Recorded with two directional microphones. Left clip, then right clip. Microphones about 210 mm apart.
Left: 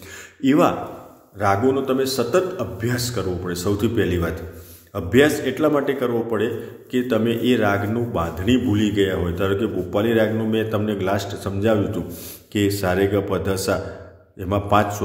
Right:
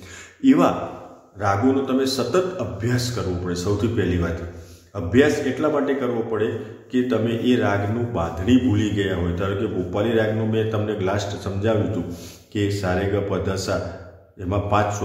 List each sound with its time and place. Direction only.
0.4 s a man's voice: 35° left (ahead or behind)